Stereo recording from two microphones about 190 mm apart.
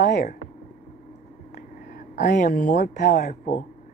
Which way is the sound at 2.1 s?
60° left (ahead or behind).